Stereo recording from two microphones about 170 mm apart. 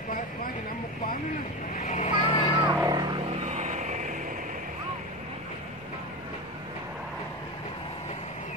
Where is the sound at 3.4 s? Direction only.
45° right (ahead or behind).